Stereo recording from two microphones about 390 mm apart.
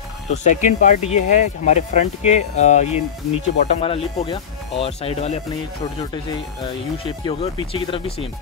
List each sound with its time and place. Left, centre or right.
0.3 s speech: centre
7.1 s speech: centre